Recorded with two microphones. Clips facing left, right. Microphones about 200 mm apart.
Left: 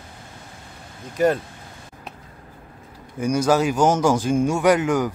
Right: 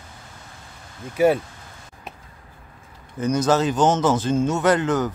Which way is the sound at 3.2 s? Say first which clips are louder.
Left 1 dB; 10° left (ahead or behind).